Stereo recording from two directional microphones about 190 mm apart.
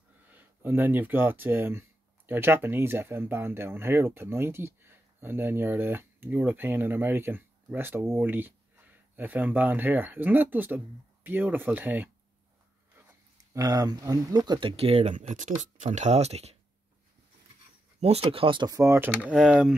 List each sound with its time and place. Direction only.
0.3 s speech: 10° right (ahead or behind)
13.5 s speech: 20° right (ahead or behind); by 16.5 s 35° right (ahead or behind)
18.0 s speech: 30° right (ahead or behind); by 19.1 s 15° right (ahead or behind)
19.2 s speech: centre (ahead or behind)